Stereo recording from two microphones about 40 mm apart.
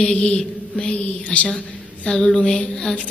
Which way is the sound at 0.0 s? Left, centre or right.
Left.